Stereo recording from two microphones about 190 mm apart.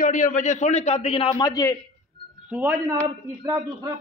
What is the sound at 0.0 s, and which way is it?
A man's voice, 45° left (ahead or behind).